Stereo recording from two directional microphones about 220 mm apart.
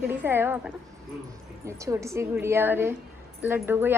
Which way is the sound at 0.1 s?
10° right (ahead or behind).